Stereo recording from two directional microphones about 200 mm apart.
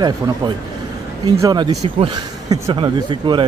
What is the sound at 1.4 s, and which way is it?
Speech, 20° right (ahead or behind).